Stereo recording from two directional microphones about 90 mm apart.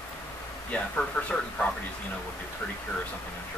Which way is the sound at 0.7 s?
10° left (ahead or behind).